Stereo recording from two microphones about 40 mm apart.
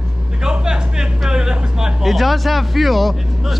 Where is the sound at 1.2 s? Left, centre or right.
Centre.